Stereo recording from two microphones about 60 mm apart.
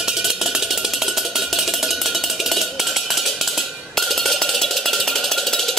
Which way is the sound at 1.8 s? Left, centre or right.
Centre.